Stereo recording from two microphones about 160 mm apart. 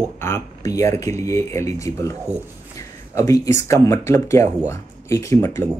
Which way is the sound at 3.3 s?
20° left (ahead or behind).